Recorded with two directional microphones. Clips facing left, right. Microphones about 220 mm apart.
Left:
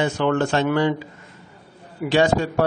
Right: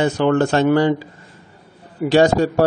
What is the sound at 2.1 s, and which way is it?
Speech, 40° right (ahead or behind).